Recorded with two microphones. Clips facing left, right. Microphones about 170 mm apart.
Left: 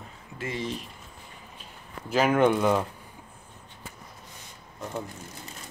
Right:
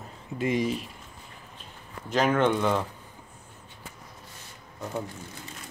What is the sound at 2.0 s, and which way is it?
Speech, 5° left (ahead or behind).